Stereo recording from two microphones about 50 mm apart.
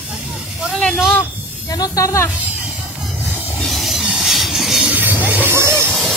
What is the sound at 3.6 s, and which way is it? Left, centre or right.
Train, centre.